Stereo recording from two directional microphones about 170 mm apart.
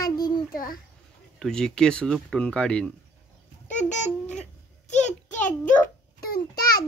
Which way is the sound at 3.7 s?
45° left (ahead or behind).